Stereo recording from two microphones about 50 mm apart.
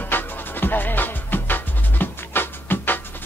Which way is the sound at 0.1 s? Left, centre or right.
Left.